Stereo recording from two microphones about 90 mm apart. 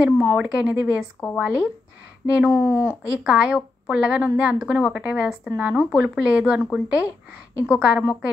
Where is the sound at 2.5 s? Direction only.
25° left (ahead or behind).